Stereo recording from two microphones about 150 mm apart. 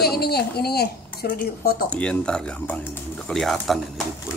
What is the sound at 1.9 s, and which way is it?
Speech, 5° left (ahead or behind).